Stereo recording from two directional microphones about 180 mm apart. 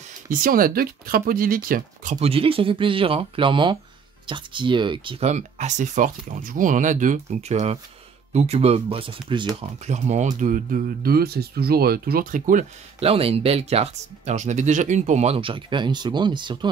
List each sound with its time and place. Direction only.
0.3 s speech: 50° right (ahead or behind)
2.1 s speech: 30° right (ahead or behind)
9.6 s speech: 40° right (ahead or behind)